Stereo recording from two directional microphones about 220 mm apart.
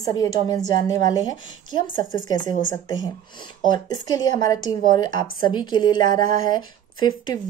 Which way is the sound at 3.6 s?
20° left (ahead or behind).